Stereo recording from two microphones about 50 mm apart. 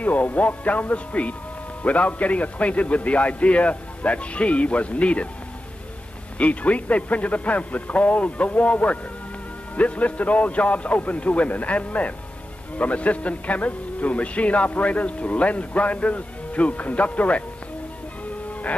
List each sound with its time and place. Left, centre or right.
0.0 s a man's voice: left
6.3 s a man's voice: left